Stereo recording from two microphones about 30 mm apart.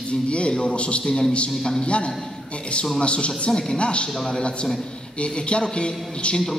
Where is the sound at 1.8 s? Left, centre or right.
Left.